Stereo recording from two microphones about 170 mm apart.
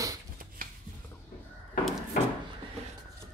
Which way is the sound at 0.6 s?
55° right (ahead or behind).